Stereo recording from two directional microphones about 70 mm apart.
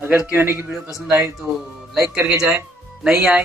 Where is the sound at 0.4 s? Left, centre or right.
Right.